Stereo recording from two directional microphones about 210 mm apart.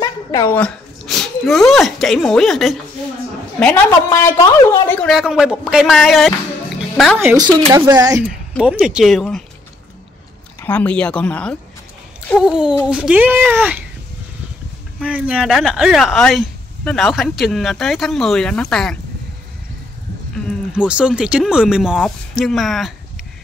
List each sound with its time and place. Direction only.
0.0 s speech: 15° left (ahead or behind); by 6.3 s centre (ahead or behind)
7.2 s speech: 10° right (ahead or behind)
8.2 s speech: 5° right (ahead or behind)
10.6 s speech: 10° left (ahead or behind); by 13.7 s 10° right (ahead or behind)
15.0 s speech: 5° right (ahead or behind)
20.7 s speech: 5° right (ahead or behind)